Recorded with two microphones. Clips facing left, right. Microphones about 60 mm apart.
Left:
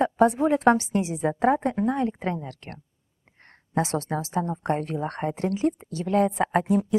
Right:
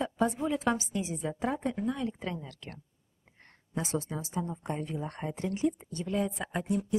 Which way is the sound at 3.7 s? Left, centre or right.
Left.